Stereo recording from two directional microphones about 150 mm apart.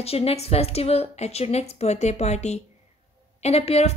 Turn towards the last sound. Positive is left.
turn(degrees=45)  # may be behind; listen again after turning